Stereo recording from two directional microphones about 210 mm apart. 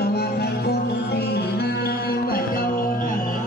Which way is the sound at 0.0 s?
50° left (ahead or behind).